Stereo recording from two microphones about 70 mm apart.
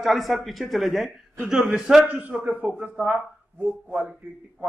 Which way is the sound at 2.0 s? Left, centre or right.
Right.